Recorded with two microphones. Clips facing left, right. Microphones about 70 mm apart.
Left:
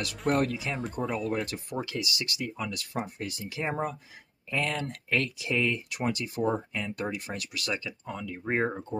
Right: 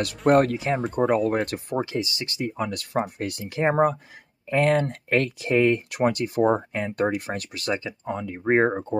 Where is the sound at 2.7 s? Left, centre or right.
Right.